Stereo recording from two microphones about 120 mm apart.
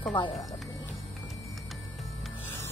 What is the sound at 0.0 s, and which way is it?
Speech, 40° left (ahead or behind).